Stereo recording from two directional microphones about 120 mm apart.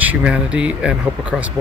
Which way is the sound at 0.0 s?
10° right (ahead or behind).